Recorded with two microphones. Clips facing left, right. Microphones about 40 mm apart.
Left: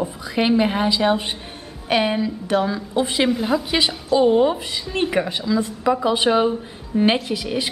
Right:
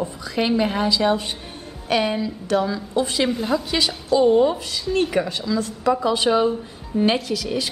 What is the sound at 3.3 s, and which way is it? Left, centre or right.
A woman's voice, centre.